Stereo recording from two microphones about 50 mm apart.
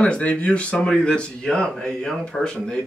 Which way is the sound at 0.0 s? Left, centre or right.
Left.